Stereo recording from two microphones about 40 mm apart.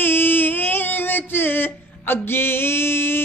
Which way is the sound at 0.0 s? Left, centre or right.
Left.